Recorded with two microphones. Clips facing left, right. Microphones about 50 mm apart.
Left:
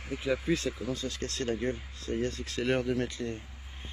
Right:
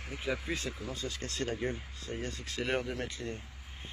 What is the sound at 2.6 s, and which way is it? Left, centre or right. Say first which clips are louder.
Speech: left 5 dB; centre.